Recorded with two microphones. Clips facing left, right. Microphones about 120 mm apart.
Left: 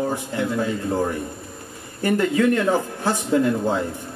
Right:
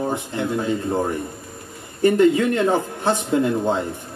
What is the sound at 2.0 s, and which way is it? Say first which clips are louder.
Speech: right 4 dB; 25° right (ahead or behind).